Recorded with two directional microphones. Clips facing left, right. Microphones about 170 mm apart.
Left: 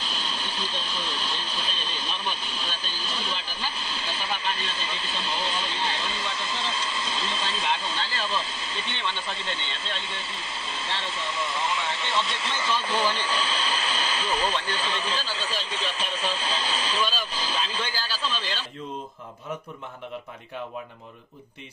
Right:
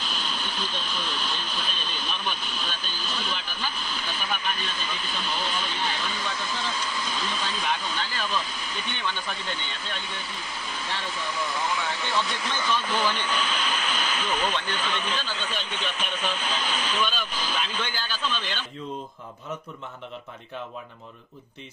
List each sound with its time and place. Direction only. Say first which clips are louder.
0.0 s a sound: right 1 dB; 30° left (ahead or behind)
9.8 s speech: left 1 dB; 25° left (ahead or behind)
11.3 s speech: even; centre (ahead or behind)
12.6 s speech: even; 30° left (ahead or behind)